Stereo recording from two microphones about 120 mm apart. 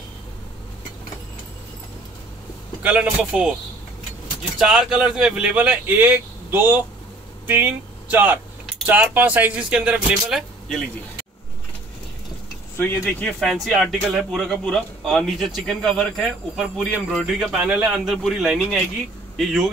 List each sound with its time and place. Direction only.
2.8 s speech: 10° right (ahead or behind)
4.6 s speech: 5° right (ahead or behind)
13.2 s speech: 5° left (ahead or behind)